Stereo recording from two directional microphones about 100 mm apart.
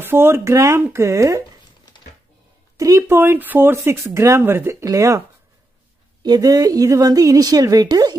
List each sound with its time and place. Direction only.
0.0 s speech: 25° right (ahead or behind)
2.8 s a woman's voice: 30° right (ahead or behind)
6.2 s a woman's voice: 40° right (ahead or behind)